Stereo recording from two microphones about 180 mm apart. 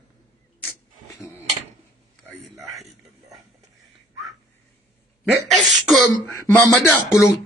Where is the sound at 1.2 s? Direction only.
15° left (ahead or behind).